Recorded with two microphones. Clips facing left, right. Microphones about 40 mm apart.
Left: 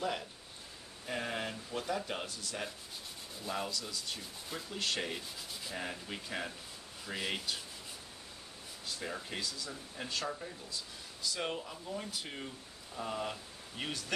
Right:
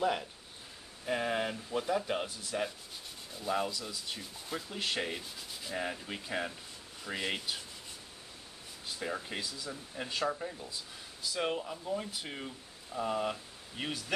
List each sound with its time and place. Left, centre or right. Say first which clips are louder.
1.0 s sanding: right 5 dB; centre
8.8 s sanding: right 3 dB; centre